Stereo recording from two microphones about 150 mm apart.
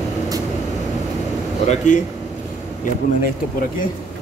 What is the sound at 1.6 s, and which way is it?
Speech, 55° left (ahead or behind).